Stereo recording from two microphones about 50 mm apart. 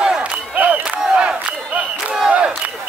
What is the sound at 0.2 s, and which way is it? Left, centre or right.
Crowd, right.